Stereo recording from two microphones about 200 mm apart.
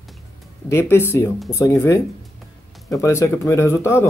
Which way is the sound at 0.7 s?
10° left (ahead or behind).